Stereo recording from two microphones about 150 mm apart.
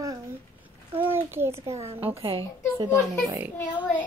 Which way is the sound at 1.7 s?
45° right (ahead or behind).